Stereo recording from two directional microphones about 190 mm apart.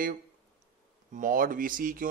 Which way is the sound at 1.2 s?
45° right (ahead or behind).